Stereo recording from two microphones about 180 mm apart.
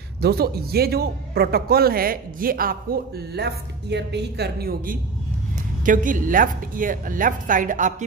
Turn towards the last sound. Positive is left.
turn(degrees=-45)  # may be behind; listen again after turning